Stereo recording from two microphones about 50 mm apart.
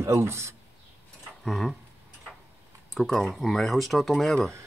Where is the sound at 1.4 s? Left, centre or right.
Centre.